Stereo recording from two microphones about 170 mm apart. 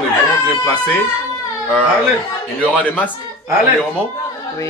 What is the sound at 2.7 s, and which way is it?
Speech, 10° left (ahead or behind).